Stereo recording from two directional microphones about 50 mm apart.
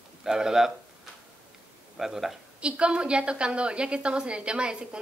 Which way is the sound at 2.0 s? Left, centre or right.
Centre.